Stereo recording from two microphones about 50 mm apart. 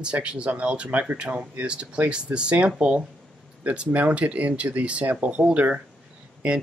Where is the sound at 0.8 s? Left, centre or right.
Right.